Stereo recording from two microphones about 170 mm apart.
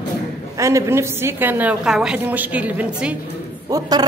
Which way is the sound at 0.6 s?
15° right (ahead or behind).